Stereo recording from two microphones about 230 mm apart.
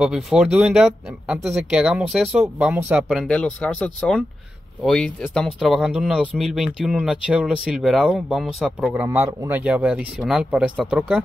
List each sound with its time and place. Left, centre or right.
0.0 s speech: centre